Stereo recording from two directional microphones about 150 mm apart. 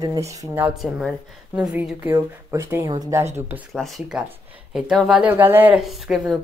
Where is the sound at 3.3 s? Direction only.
10° right (ahead or behind).